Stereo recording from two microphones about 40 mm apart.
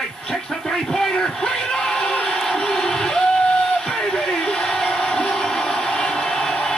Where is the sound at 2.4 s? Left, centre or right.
Centre.